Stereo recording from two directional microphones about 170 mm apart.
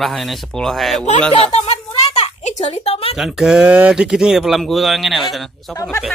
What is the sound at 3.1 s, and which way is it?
Speech, centre (ahead or behind).